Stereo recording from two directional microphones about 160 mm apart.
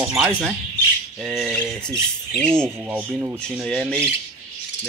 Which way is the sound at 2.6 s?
10° right (ahead or behind).